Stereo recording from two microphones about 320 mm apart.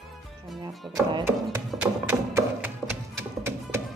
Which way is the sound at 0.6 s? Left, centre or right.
Centre.